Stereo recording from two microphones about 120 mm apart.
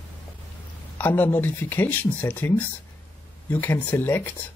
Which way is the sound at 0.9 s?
15° left (ahead or behind).